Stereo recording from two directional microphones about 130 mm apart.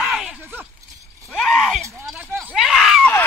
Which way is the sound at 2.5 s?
Centre (ahead or behind).